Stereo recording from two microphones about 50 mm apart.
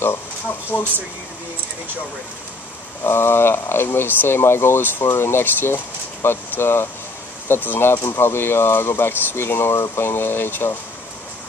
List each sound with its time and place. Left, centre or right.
0.7 s speech: left
3.0 s speech: left